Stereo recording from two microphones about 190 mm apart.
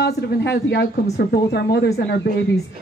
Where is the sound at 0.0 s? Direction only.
60° left (ahead or behind).